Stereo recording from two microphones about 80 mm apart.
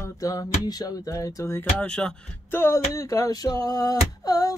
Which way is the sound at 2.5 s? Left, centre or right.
Left.